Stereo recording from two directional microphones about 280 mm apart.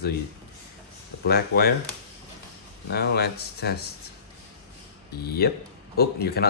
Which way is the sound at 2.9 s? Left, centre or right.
Left.